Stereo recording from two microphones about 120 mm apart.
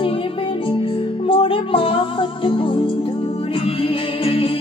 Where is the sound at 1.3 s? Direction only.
50° left (ahead or behind).